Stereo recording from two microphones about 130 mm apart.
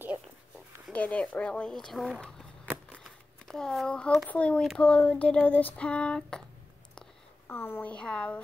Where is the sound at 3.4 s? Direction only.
5° left (ahead or behind).